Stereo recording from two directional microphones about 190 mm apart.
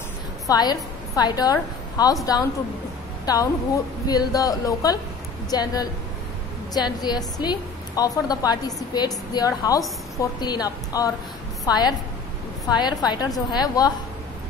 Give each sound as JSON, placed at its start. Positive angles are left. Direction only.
{"t": 0.5, "sound": "a woman's voice", "side_deg": 20}
{"t": 3.3, "sound": "a woman's voice", "side_deg": 20}